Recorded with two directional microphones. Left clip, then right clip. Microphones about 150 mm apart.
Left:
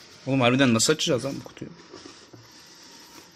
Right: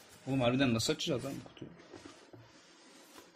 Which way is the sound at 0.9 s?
25° left (ahead or behind).